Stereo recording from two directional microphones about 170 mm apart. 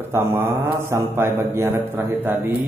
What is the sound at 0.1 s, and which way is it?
Mantra, 15° right (ahead or behind).